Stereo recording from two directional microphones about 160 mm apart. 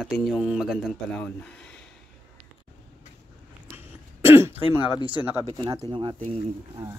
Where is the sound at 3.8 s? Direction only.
15° right (ahead or behind).